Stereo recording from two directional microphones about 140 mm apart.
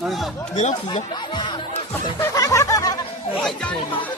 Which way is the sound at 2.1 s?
25° left (ahead or behind).